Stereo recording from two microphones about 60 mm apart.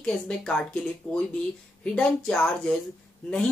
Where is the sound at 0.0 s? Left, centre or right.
Centre.